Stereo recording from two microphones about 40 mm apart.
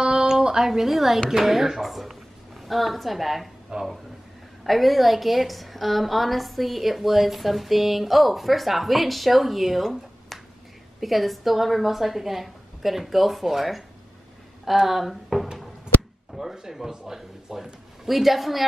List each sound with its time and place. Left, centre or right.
0.0 s a sound: centre
1.3 s a woman's voice: centre
3.7 s speech: centre
4.6 s a woman's voice: centre